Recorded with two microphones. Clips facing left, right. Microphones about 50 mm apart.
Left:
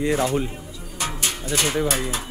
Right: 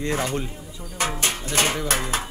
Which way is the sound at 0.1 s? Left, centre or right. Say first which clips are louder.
Left 2 dB; centre.